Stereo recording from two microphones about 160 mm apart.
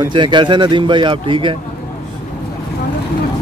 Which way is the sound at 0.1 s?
30° right (ahead or behind).